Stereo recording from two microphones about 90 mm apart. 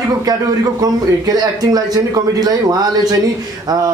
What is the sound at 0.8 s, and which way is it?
A man's voice, 45° right (ahead or behind).